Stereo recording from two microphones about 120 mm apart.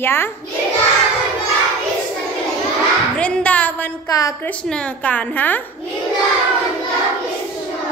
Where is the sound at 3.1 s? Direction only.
10° left (ahead or behind).